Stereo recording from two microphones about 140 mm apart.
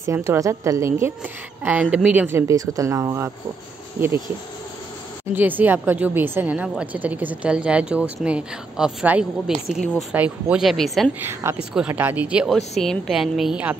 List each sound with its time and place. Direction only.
0.0 s a woman's voice: 20° right (ahead or behind)
5.3 s speech: 15° right (ahead or behind)
11.1 s speech: 15° right (ahead or behind)